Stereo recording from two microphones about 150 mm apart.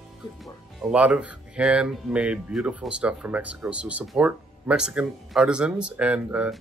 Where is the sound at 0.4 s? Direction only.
5° right (ahead or behind).